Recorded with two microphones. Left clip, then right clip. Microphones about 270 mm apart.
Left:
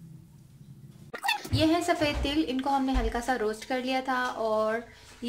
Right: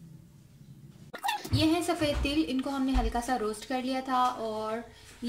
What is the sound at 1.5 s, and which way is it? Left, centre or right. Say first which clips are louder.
A woman's voice: left 2 dB; left.